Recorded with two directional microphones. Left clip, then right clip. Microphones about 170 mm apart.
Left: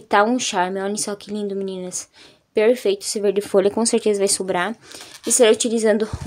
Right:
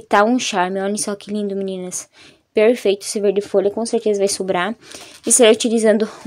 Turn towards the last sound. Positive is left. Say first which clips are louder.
# right 3 dB
turn(degrees=-20)  # may be behind; listen again after turning